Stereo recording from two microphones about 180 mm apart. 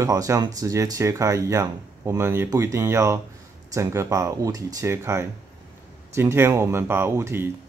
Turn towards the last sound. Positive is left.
turn(degrees=-15)  # may be behind; listen again after turning